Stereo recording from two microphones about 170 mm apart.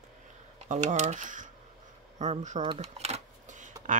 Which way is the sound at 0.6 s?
45° right (ahead or behind).